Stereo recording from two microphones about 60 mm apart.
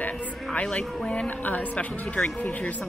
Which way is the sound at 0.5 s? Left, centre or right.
Centre.